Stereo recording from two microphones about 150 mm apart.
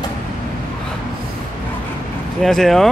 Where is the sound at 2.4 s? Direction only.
Centre (ahead or behind).